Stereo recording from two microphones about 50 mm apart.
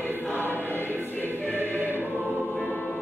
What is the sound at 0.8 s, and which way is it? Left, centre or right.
Music, right.